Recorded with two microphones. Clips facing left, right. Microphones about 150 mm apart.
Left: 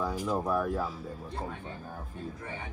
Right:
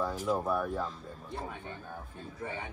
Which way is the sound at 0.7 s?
5° left (ahead or behind).